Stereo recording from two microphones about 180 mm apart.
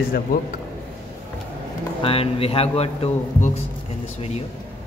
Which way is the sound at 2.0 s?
30° left (ahead or behind).